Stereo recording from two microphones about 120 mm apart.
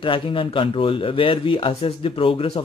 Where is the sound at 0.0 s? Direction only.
45° left (ahead or behind).